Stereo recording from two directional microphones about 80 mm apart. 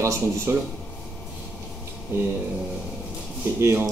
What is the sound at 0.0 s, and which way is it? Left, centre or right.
Speech, right.